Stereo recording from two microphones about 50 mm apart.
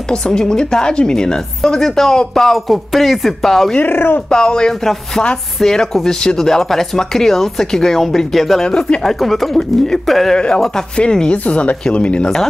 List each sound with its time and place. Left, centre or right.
0.1 s a woman's voice: centre
3.8 s speech: left
4.3 s a woman's voice: centre
8.6 s speech: centre
9.0 s speech: centre
10.3 s a woman's voice: centre
11.4 s speech: left